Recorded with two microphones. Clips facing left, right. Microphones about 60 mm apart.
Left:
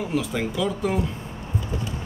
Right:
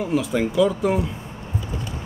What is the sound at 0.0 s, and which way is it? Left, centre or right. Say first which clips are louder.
A man's voice: right 4 dB; centre.